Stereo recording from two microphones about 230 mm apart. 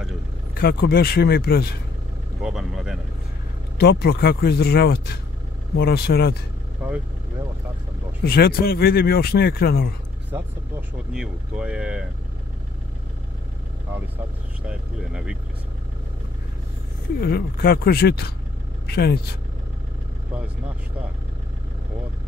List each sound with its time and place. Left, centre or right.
0.6 s speech: left
2.4 s vehicle: centre
3.7 s speech: left
8.3 s speech: left
11.1 s speech: centre
14.7 s speech: centre
17.2 s speech: left